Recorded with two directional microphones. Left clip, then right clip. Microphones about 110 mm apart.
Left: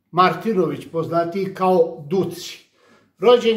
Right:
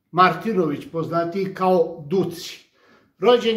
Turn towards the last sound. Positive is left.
turn(degrees=35)  # may be behind; listen again after turning